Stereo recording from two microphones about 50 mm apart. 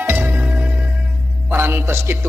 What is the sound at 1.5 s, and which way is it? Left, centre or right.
Music, right.